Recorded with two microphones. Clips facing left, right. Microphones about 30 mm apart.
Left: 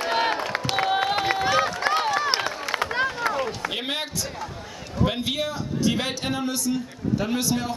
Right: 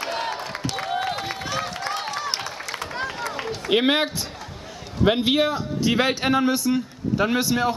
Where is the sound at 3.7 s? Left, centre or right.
Right.